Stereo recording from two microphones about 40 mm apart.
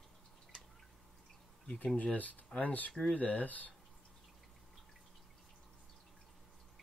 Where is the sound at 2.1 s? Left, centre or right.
Left.